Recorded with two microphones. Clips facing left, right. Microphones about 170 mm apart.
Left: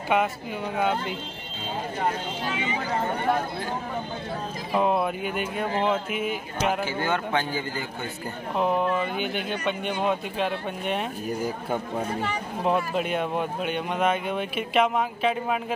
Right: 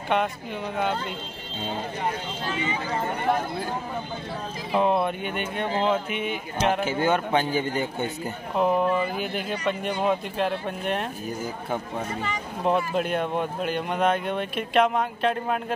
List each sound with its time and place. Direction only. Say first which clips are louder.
0.1 s speech: left 1 dB; 5° left (ahead or behind)
4.7 s speech: right 1 dB; centre (ahead or behind)
6.8 s a man's voice: right 3 dB; 20° right (ahead or behind)
8.5 s speech: right 2 dB; centre (ahead or behind)
12.6 s speech: right 1 dB; centre (ahead or behind)